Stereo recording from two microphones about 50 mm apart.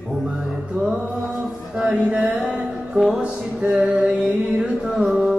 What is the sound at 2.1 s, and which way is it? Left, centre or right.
Music, right.